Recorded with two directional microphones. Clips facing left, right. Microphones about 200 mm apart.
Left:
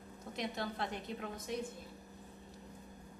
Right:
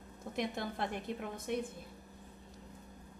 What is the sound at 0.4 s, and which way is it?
A woman's voice, 50° right (ahead or behind).